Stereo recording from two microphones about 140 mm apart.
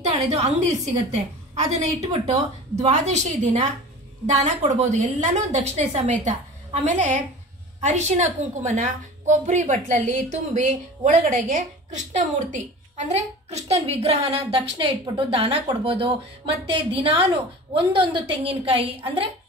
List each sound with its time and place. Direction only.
0.1 s a woman's voice: 50° right (ahead or behind)